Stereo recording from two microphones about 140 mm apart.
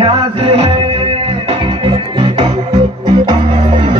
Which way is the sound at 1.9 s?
40° right (ahead or behind).